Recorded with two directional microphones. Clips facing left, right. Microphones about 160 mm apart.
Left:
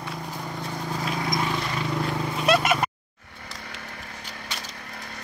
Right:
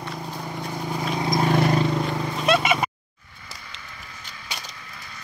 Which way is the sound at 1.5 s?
50° right (ahead or behind).